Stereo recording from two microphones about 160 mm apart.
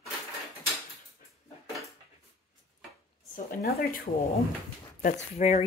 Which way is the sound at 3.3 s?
65° left (ahead or behind).